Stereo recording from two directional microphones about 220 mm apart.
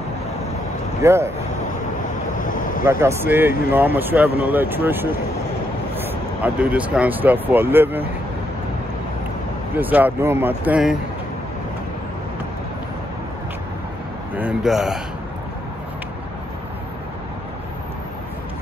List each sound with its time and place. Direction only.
1.0 s speech: 10° right (ahead or behind)
2.3 s vehicle: 35° left (ahead or behind)
2.8 s speech: 10° right (ahead or behind)
9.8 s speech: 10° right (ahead or behind)
14.3 s speech: 5° right (ahead or behind)